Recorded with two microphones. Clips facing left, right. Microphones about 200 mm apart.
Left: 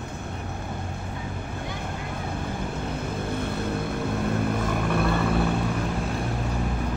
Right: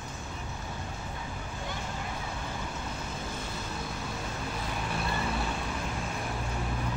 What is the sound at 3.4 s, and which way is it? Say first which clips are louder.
Vehicle: left 10 dB; 60° left (ahead or behind).